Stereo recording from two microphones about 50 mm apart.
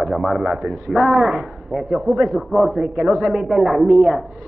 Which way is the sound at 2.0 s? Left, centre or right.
Centre.